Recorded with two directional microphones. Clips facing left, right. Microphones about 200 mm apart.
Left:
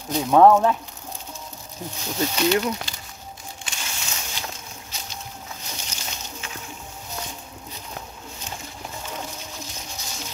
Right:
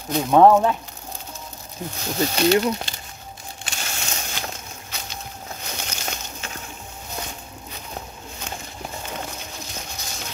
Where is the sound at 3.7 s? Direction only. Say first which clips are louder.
Right 4 dB; 55° right (ahead or behind).